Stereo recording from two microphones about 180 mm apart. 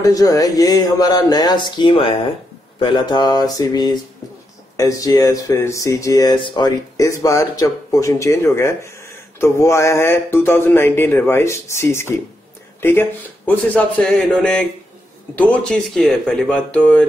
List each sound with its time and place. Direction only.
0.0 s speech: 20° left (ahead or behind)